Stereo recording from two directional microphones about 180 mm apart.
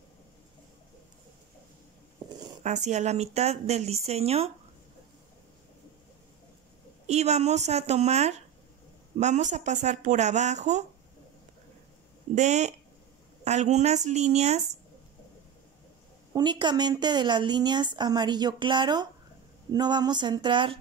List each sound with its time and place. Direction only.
2.6 s speech: 40° right (ahead or behind)
7.1 s speech: 35° right (ahead or behind)
12.4 s speech: 40° right (ahead or behind)
16.3 s a woman's voice: 25° right (ahead or behind)